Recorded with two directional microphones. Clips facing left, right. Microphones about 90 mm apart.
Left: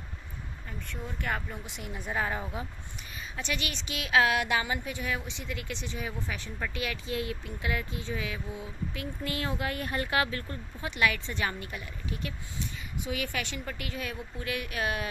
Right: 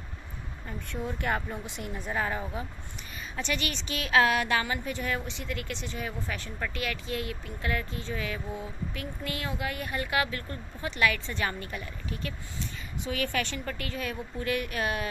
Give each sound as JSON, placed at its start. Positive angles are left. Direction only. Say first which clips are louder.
{"t": 0.7, "sound": "a woman's voice", "louder": "right 6 dB", "side_deg": -5}
{"t": 2.0, "sound": "speech", "louder": "even", "side_deg": 10}
{"t": 8.9, "sound": "speech", "louder": "left 3 dB", "side_deg": 25}
{"t": 10.9, "sound": "speech", "louder": "right 1 dB", "side_deg": 15}